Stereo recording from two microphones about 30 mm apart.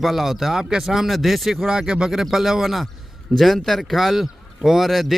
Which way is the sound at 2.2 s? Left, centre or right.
Centre.